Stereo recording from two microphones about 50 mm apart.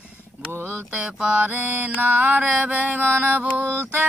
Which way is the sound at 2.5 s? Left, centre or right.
Right.